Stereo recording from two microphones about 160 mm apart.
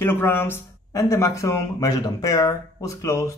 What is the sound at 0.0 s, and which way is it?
Speech, 15° left (ahead or behind).